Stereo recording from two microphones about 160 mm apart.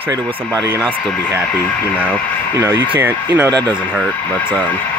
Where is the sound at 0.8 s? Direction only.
10° left (ahead or behind).